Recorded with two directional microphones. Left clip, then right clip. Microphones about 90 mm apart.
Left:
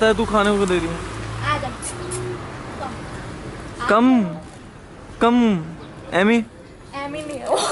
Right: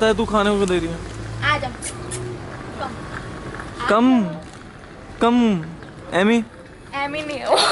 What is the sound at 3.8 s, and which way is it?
Speech, centre (ahead or behind).